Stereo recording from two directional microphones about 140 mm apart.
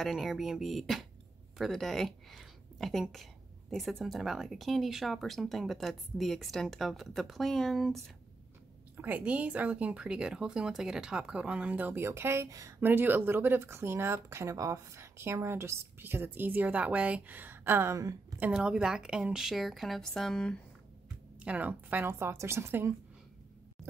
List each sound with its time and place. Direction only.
0.0 s speech: centre (ahead or behind)
8.9 s speech: 10° right (ahead or behind)
18.4 s speech: 5° right (ahead or behind)
21.4 s speech: 10° right (ahead or behind)